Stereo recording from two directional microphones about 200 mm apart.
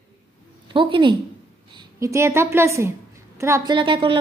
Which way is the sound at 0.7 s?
25° right (ahead or behind).